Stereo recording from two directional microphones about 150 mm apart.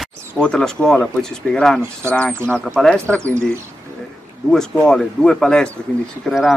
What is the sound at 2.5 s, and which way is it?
Speech, 5° left (ahead or behind).